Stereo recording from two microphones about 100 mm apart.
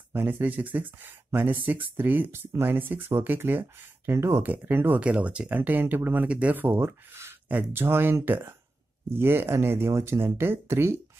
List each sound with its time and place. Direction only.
0.1 s speech: 20° right (ahead or behind)